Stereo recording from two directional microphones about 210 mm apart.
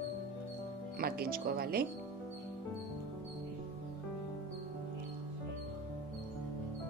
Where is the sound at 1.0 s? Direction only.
45° right (ahead or behind).